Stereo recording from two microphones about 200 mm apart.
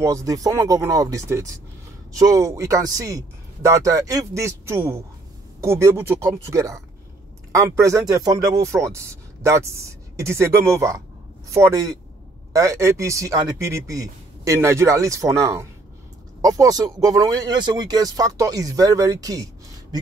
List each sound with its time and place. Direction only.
0.0 s speech: 15° right (ahead or behind)